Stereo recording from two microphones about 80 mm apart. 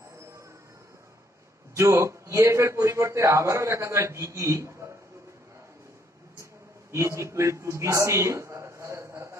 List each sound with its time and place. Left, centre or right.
1.8 s a man's voice: right
6.9 s a man's voice: right